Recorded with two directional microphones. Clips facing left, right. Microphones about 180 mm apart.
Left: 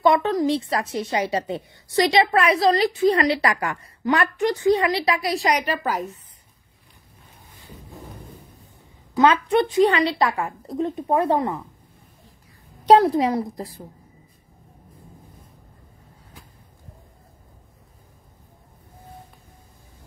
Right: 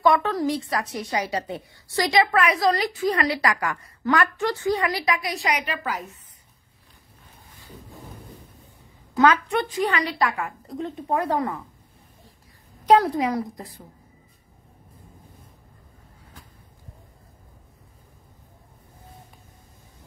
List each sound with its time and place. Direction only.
0.0 s a woman's voice: 20° left (ahead or behind); by 6.0 s 40° left (ahead or behind)
9.2 s a woman's voice: 25° left (ahead or behind)
12.8 s a woman's voice: 30° left (ahead or behind)